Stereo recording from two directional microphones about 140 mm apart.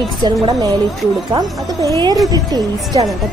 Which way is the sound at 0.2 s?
25° right (ahead or behind).